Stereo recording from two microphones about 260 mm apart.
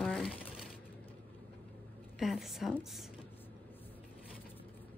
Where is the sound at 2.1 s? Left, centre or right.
Centre.